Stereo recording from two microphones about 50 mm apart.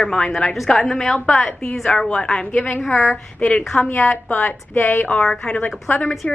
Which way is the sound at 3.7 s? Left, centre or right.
Left.